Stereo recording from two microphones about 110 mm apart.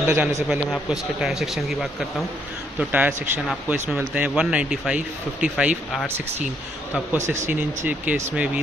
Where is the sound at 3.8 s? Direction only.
15° right (ahead or behind).